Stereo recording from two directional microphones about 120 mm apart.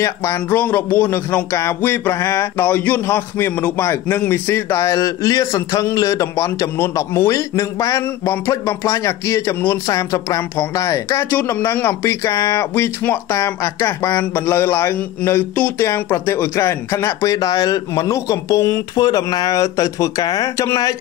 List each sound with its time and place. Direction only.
0.0 s speech: 20° left (ahead or behind)